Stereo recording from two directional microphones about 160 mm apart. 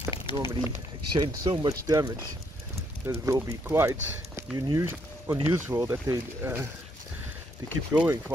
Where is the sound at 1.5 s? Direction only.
30° right (ahead or behind).